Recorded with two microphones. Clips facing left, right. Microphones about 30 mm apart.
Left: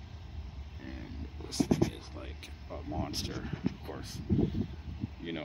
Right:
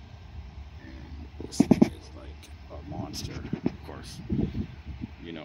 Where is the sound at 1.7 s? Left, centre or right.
Right.